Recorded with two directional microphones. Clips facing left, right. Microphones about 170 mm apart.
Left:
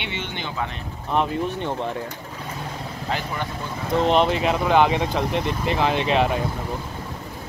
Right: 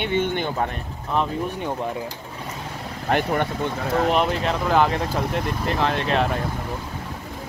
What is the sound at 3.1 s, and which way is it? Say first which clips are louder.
Speech: right 7 dB; 60° right (ahead or behind).